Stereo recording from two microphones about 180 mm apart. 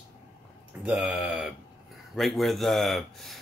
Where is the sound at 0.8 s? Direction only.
5° right (ahead or behind).